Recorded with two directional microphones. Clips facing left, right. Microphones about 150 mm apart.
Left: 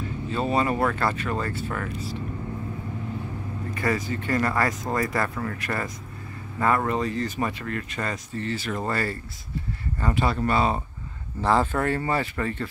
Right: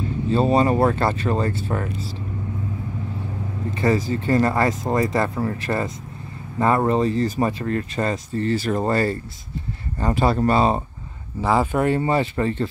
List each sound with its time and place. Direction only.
0.3 s speech: 30° right (ahead or behind)
3.7 s speech: 30° right (ahead or behind)
11.4 s speech: 10° right (ahead or behind); by 12.6 s 25° right (ahead or behind)